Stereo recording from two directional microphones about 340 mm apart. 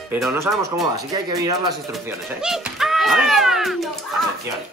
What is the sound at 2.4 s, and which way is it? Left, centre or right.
Music, centre.